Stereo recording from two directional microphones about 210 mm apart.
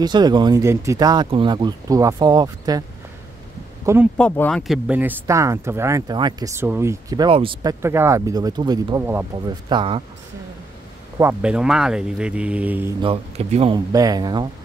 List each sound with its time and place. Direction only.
0.0 s speech: 20° right (ahead or behind)
3.8 s speech: 10° right (ahead or behind)
4.2 s speech: 5° left (ahead or behind); by 7.7 s 25° right (ahead or behind)
7.8 s speech: 10° right (ahead or behind)
11.1 s speech: 10° right (ahead or behind)
13.0 s speech: 30° right (ahead or behind)
13.9 s speech: 20° right (ahead or behind)